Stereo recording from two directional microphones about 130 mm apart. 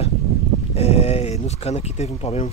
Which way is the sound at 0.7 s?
55° left (ahead or behind).